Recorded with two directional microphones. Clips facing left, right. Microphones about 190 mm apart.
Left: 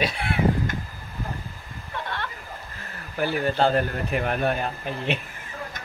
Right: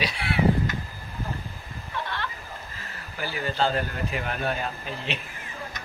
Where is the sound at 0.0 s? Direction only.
50° left (ahead or behind).